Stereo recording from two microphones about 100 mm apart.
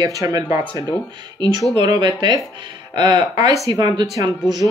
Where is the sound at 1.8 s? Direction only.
45° right (ahead or behind).